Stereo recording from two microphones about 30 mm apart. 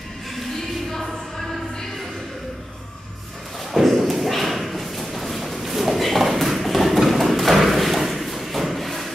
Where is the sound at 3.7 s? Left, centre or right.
Centre.